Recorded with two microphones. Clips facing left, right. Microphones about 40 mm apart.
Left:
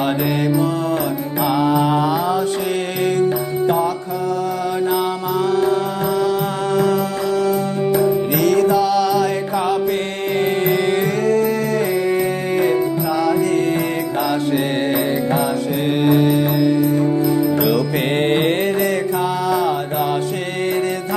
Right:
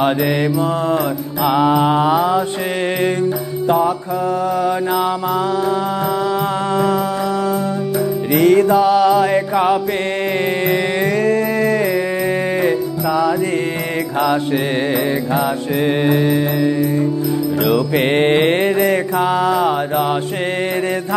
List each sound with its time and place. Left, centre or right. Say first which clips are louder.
1.4 s mantra: right 3 dB; right
6.7 s music: left 1 dB; right
8.3 s music: right 3 dB; right
16.5 s music: left 1 dB; right
17.9 s mantra: right 3 dB; right